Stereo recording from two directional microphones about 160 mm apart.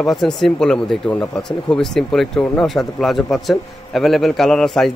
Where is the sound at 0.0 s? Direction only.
Centre (ahead or behind).